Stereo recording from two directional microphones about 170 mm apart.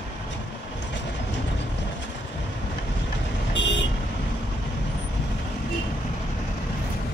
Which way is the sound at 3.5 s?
90° left.